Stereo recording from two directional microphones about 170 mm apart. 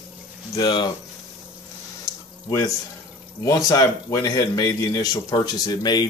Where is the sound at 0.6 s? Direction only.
25° left (ahead or behind).